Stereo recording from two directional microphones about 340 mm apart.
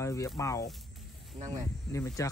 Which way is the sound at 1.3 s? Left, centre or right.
Centre.